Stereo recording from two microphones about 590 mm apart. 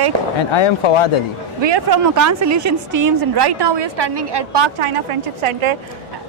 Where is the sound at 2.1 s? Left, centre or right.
Right.